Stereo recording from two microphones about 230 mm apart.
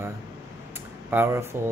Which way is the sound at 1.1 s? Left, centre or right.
Centre.